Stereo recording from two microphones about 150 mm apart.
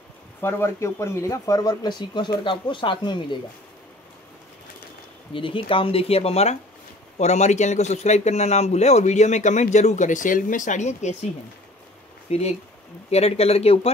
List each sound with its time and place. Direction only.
0.4 s speech: 15° left (ahead or behind)
5.3 s a man's voice: 35° left (ahead or behind); by 11.2 s 50° left (ahead or behind)
12.3 s a man's voice: 45° left (ahead or behind)